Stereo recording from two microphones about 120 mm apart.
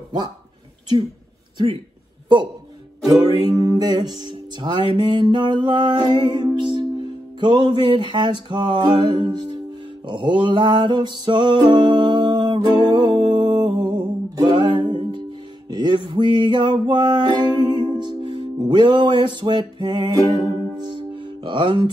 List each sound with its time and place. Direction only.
3.1 s music: 30° right (ahead or behind)